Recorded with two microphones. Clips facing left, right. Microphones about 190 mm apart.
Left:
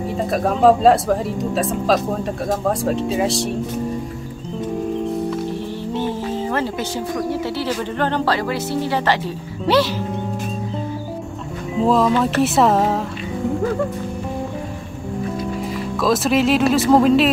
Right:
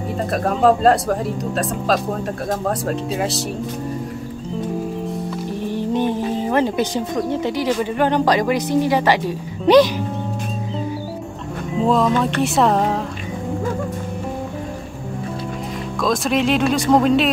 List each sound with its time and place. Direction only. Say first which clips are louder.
0.3 s speech: left 2 dB; centre (ahead or behind)
5.7 s speech: right 4 dB; 15° right (ahead or behind)
11.8 s speech: left 1 dB; centre (ahead or behind)
16.0 s speech: left 2 dB; 5° left (ahead or behind)